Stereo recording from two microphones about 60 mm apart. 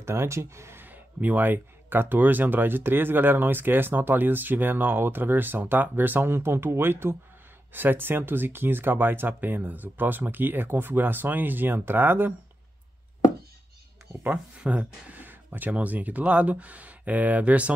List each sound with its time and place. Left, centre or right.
0.0 s speech: right
0.8 s speech: right
14.6 s speech: right